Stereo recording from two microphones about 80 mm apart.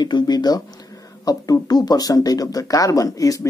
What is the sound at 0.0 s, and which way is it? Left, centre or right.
Speech, left.